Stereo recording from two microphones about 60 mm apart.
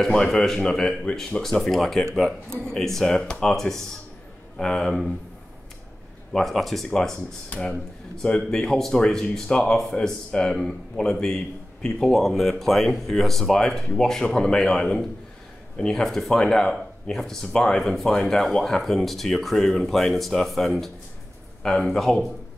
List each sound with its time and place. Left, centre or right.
0.3 s speech: centre
6.3 s speech: centre
7.5 s speech: left
8.2 s speech: centre